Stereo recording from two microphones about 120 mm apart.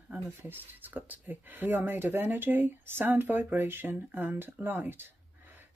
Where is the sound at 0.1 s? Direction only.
15° right (ahead or behind).